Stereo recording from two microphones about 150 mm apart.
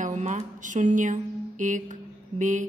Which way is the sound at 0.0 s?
55° right (ahead or behind).